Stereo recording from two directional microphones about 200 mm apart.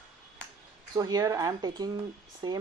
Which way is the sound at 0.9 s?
20° right (ahead or behind).